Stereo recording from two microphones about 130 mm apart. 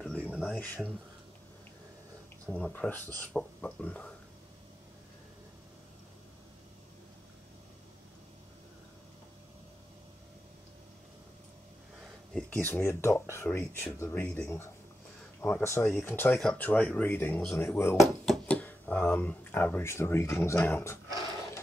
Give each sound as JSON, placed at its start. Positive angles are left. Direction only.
{"t": 0.4, "sound": "speech", "side_deg": 10}
{"t": 2.4, "sound": "speech", "side_deg": 10}
{"t": 12.4, "sound": "speech", "side_deg": 10}
{"t": 14.2, "sound": "speech", "side_deg": 10}
{"t": 15.4, "sound": "speech", "side_deg": 20}
{"t": 18.2, "sound": "a sound", "side_deg": 5}
{"t": 18.6, "sound": "speech", "side_deg": 15}